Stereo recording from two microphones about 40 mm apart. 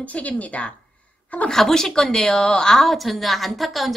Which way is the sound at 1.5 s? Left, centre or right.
Centre.